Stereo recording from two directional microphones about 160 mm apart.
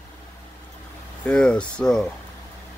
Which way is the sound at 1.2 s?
5° left (ahead or behind).